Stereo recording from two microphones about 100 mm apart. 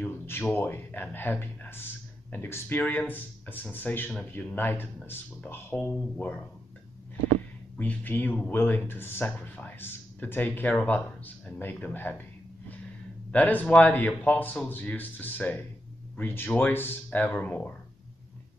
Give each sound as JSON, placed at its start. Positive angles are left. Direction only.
{"t": 0.0, "sound": "speech", "side_deg": 25}
{"t": 7.7, "sound": "speech", "side_deg": 15}